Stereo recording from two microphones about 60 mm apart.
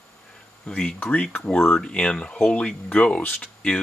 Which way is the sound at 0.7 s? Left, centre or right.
Centre.